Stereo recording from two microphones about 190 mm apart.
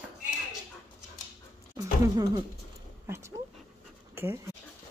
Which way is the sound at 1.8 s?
20° right (ahead or behind).